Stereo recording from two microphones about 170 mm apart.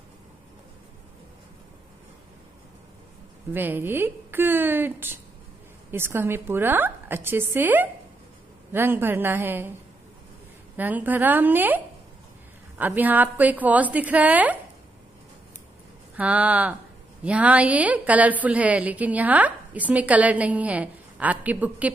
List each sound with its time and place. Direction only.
3.5 s a woman's voice: 10° right (ahead or behind)
10.8 s a woman's voice: 10° right (ahead or behind)
16.2 s a woman's voice: 10° right (ahead or behind)